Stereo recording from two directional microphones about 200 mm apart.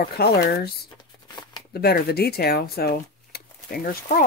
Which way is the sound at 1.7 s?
50° left (ahead or behind).